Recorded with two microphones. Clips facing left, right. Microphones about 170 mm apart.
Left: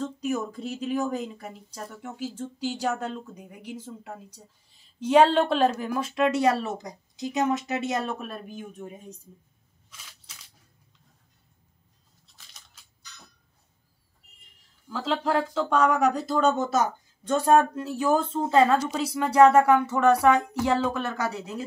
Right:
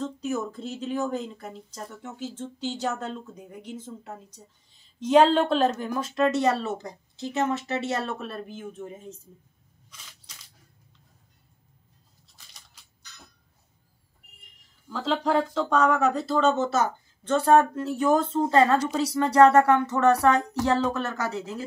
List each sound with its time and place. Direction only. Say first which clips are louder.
0.0 s a woman's voice: left 1 dB; 10° left (ahead or behind)
14.9 s a woman's voice: right 1 dB; centre (ahead or behind)